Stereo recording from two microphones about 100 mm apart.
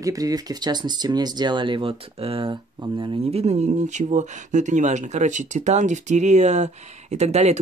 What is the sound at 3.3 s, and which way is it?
Speech, 90° right.